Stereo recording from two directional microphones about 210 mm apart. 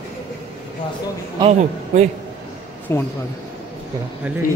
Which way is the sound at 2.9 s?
10° left (ahead or behind).